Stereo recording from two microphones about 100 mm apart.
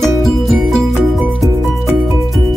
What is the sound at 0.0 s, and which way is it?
Music, centre (ahead or behind).